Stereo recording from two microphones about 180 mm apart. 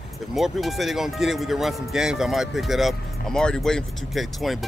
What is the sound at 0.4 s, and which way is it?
Speech, centre (ahead or behind).